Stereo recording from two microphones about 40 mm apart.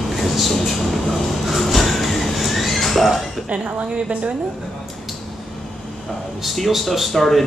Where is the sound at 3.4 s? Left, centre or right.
Right.